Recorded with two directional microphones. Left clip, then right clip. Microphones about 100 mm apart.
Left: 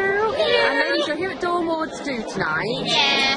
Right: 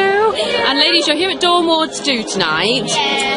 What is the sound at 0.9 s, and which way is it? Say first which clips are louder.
A woman's voice: right 8 dB; 5° right (ahead or behind).